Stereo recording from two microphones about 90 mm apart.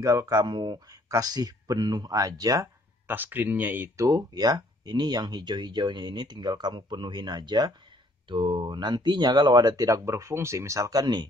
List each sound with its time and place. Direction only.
0.0 s speech: 40° right (ahead or behind)
1.0 s speech: 45° right (ahead or behind)
3.1 s speech: 20° right (ahead or behind)
3.9 s speech: 45° right (ahead or behind)